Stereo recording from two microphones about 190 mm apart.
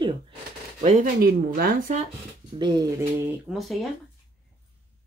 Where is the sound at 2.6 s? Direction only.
20° right (ahead or behind).